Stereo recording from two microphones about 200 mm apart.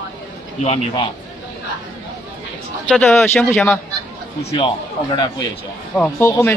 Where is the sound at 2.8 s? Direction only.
5° left (ahead or behind).